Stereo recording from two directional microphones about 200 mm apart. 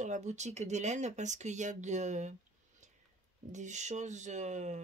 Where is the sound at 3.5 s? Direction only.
35° right (ahead or behind).